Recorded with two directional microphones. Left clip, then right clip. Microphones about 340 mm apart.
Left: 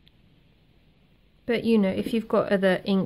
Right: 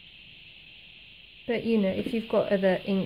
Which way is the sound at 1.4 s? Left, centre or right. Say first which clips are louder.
Left 3 dB; centre.